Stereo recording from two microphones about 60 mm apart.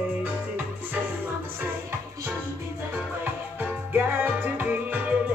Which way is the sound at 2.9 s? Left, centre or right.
Right.